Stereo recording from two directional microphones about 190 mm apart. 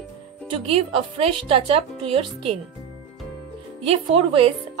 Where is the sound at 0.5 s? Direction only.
30° right (ahead or behind).